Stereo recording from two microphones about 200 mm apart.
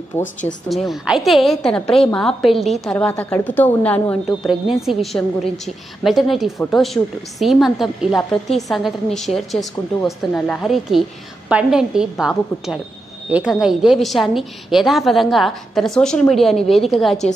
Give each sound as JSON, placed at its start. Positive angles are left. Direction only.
{"t": 0.2, "sound": "speech", "side_deg": 40}
{"t": 0.8, "sound": "a woman's voice", "side_deg": 0}